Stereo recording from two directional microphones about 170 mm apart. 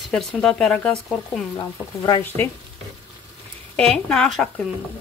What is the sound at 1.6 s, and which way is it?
Speech, 20° left (ahead or behind).